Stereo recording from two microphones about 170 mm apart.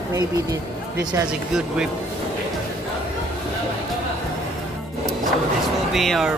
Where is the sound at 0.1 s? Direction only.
20° right (ahead or behind).